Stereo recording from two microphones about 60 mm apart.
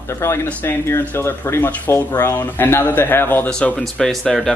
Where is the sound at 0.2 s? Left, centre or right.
Left.